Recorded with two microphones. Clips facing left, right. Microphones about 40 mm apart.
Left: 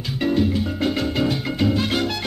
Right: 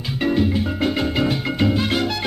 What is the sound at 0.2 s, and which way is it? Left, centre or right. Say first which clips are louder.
Music: right 1 dB; centre.